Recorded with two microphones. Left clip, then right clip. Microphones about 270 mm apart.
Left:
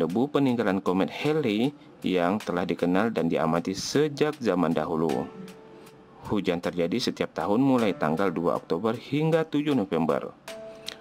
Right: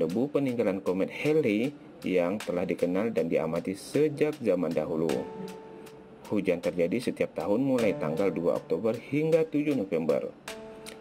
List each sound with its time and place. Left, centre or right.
0.3 s speech: centre
6.3 s speech: centre